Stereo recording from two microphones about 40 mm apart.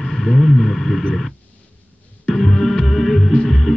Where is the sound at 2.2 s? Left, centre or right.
Centre.